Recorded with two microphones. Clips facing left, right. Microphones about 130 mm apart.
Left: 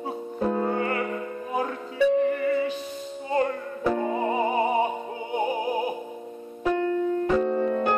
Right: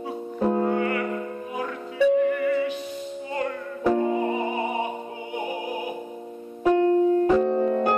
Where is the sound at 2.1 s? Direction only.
35° left (ahead or behind).